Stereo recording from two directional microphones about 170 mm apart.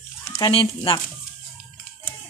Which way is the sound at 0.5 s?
30° left (ahead or behind).